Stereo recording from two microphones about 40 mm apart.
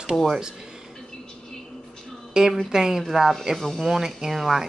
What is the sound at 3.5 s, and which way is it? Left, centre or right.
Speech, centre.